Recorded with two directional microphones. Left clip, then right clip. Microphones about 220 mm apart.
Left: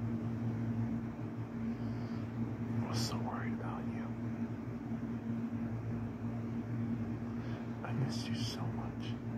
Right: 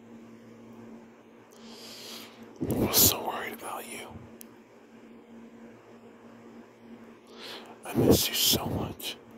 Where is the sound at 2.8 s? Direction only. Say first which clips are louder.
Right 15 dB; 55° right (ahead or behind).